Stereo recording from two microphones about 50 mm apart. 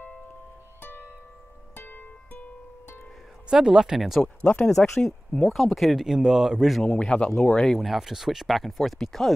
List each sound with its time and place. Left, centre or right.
0.7 s music: left
3.4 s speech: centre
4.4 s speech: left
4.6 s speech: centre
5.9 s speech: centre
6.9 s speech: centre
7.7 s speech: centre